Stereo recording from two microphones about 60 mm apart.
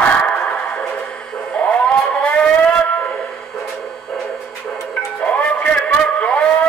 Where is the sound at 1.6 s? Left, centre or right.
Centre.